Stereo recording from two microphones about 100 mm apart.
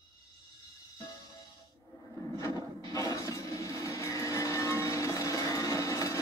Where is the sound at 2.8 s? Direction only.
35° left (ahead or behind).